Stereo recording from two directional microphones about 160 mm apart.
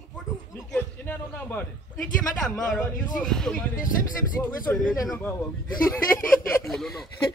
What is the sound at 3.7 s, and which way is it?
Speech, 60° left (ahead or behind).